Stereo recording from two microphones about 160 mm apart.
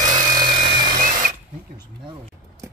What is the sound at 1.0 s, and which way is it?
Drill, 55° right (ahead or behind).